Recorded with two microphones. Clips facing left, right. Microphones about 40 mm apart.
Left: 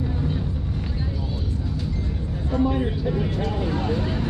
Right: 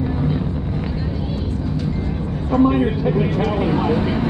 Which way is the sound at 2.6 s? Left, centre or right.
Right.